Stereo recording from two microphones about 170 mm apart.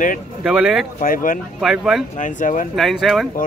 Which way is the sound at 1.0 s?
55° left (ahead or behind).